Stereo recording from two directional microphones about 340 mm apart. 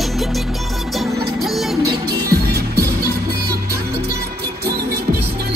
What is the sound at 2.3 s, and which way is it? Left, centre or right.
Music, right.